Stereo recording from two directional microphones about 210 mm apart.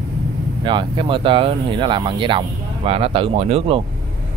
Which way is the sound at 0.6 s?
20° right (ahead or behind).